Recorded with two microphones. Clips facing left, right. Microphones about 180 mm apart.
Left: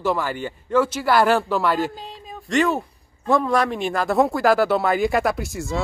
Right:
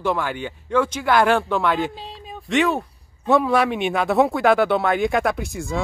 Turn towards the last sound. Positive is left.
turn(degrees=0)  # may be behind; listen again after turning